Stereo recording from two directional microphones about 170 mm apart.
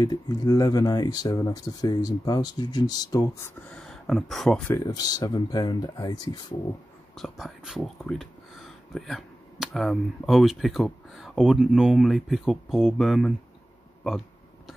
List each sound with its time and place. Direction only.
0.0 s speech: 20° left (ahead or behind)
3.7 s speech: centre (ahead or behind)
4.7 s speech: 25° left (ahead or behind)
7.2 s speech: centre (ahead or behind)